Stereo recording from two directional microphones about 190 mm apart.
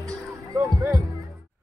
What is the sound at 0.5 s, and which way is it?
Music, 15° right (ahead or behind).